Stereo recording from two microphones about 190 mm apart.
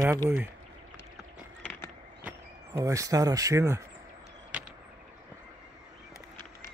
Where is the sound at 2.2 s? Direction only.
15° right (ahead or behind).